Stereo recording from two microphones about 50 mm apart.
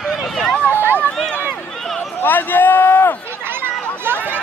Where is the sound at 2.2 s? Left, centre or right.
Left.